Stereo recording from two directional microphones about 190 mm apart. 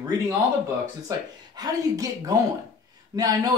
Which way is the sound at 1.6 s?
20° right (ahead or behind).